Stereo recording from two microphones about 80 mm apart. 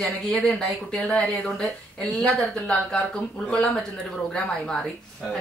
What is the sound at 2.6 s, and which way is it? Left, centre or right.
Speech, centre.